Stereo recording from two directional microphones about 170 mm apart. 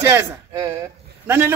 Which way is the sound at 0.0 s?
15° right (ahead or behind).